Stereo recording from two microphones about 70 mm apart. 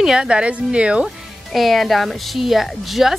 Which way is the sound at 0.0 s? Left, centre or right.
Centre.